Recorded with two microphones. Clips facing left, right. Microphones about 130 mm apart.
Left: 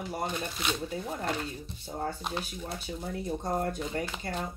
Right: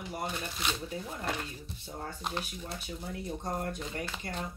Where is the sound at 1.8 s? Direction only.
30° left (ahead or behind).